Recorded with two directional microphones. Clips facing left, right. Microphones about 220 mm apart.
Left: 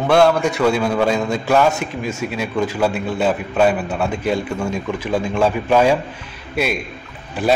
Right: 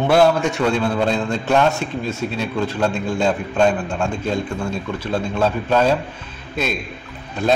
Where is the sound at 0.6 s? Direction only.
10° left (ahead or behind).